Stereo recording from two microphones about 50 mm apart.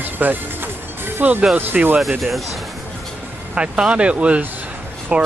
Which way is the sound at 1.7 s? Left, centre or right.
Centre.